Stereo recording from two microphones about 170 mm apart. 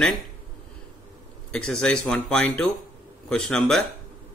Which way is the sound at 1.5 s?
5° left (ahead or behind).